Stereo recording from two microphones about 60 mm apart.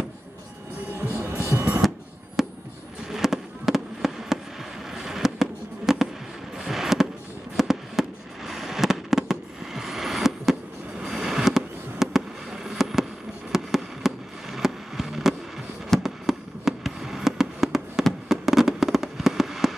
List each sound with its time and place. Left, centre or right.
1.1 s music: right
1.8 s music: centre
2.4 s fireworks: centre
6.5 s a sound: centre
7.5 s fireworks: centre